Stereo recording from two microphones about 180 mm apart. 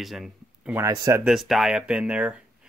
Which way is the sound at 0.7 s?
20° right (ahead or behind).